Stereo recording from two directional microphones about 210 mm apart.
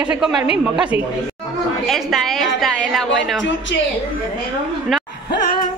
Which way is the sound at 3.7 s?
55° left (ahead or behind).